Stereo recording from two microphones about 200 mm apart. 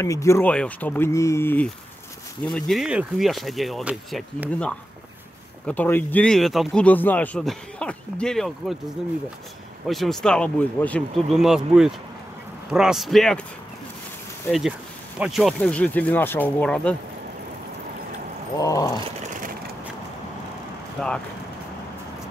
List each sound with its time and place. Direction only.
0.0 s speech: 15° left (ahead or behind)
2.5 s speech: centre (ahead or behind)
9.8 s speech: centre (ahead or behind)
15.1 s speech: centre (ahead or behind)
18.6 s speech: 15° left (ahead or behind)
19.0 s sewing machine: 40° right (ahead or behind)
21.0 s speech: centre (ahead or behind)